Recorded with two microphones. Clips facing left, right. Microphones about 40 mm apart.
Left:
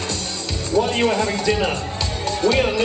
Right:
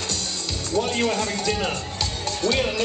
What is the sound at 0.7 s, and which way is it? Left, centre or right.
Speech, left.